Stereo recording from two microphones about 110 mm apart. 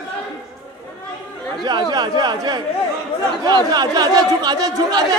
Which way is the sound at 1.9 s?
40° right (ahead or behind).